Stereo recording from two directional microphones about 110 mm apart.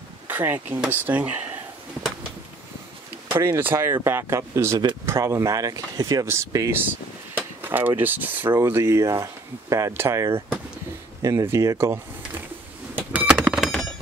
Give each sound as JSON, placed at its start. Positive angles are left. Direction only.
{"t": 0.3, "sound": "speech", "side_deg": -15}
{"t": 3.3, "sound": "speech", "side_deg": -20}
{"t": 6.2, "sound": "speech", "side_deg": -25}
{"t": 6.8, "sound": "speech", "side_deg": -20}
{"t": 11.4, "sound": "speech", "side_deg": -30}
{"t": 12.9, "sound": "a sound", "side_deg": -15}